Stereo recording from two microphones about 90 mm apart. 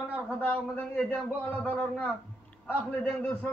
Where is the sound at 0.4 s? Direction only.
15° left (ahead or behind).